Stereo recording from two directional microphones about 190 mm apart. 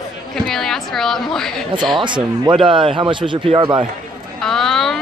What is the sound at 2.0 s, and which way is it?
Speech, 25° right (ahead or behind).